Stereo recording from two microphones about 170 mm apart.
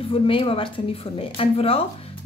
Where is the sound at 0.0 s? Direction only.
30° left (ahead or behind).